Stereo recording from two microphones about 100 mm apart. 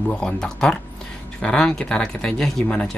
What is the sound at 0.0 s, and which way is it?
Speech, 10° left (ahead or behind).